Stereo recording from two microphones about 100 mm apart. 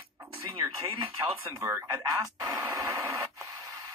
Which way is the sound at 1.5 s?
30° right (ahead or behind).